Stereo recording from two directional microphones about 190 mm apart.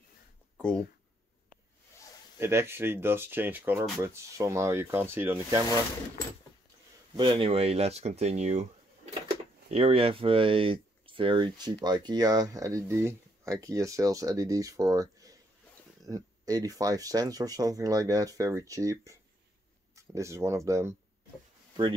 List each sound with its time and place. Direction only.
0.6 s speech: 5° left (ahead or behind)
2.3 s speech: 15° right (ahead or behind)
7.2 s speech: 25° right (ahead or behind)
9.7 s speech: 30° right (ahead or behind); by 20.9 s 15° right (ahead or behind)